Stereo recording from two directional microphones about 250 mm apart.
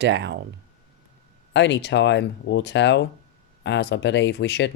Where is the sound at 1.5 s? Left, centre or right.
Left.